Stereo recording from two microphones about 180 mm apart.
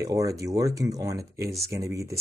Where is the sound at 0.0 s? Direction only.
20° right (ahead or behind).